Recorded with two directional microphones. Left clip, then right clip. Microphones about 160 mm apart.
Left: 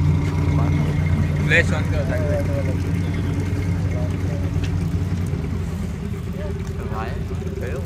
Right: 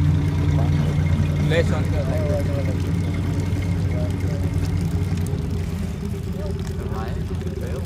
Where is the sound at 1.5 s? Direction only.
20° right (ahead or behind).